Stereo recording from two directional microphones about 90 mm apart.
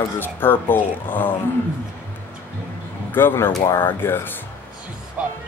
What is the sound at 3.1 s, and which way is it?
Speech, 25° left (ahead or behind).